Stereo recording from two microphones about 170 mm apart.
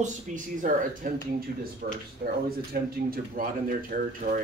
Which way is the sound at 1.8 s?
65° right (ahead or behind).